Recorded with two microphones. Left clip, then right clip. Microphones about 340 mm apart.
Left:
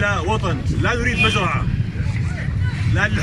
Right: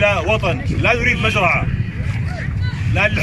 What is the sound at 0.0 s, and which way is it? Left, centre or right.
Speech, centre.